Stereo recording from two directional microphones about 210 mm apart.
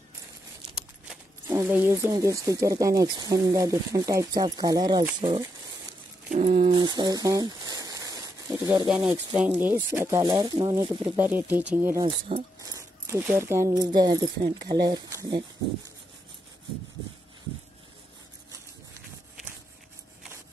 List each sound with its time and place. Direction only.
1.5 s speech: 10° right (ahead or behind)
5.9 s a sound: 30° right (ahead or behind)
8.8 s speech: 5° right (ahead or behind); by 11.1 s 20° right (ahead or behind)
11.1 s speech: 10° right (ahead or behind)
12.3 s speech: 25° right (ahead or behind)
12.6 s speech: 15° right (ahead or behind)